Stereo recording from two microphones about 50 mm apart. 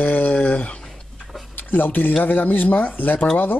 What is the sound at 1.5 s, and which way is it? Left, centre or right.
Speech, left.